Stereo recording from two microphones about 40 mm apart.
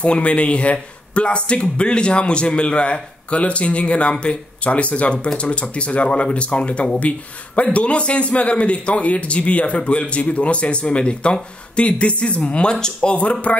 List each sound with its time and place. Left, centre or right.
0.0 s a man's voice: left